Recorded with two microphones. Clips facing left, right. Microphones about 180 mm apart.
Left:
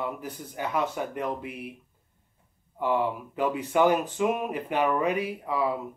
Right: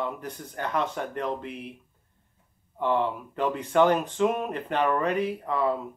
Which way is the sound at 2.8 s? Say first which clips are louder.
Right 1 dB; 10° left (ahead or behind).